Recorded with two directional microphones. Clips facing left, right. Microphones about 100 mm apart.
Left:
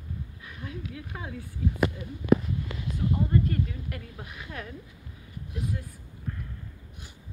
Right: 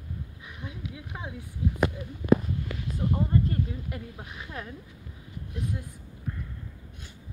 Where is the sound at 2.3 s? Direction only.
45° right (ahead or behind).